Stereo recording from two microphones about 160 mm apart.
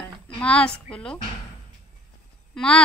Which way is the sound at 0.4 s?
5° left (ahead or behind).